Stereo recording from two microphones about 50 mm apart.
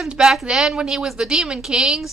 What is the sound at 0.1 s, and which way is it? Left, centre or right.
Speech, centre.